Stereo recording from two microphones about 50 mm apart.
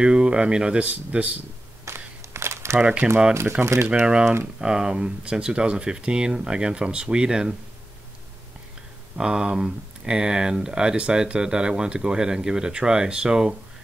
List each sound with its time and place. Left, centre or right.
0.0 s speech: centre
1.9 s a sound: right
2.2 s a sound: right
3.0 s speech: centre
3.6 s speech: right
4.0 s speech: centre
9.2 s speech: centre